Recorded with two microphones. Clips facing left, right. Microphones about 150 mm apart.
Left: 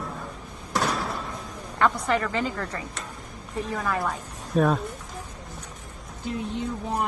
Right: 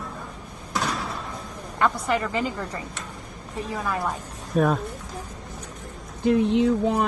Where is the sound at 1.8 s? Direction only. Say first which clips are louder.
Even; 5° right (ahead or behind).